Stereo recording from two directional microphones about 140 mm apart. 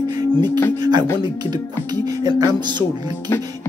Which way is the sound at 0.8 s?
30° right (ahead or behind).